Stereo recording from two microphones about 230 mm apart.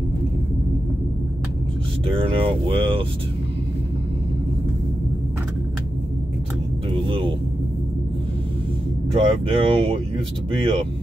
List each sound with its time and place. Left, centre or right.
2.3 s speech: right
7.1 s vehicle: right
9.1 s speech: right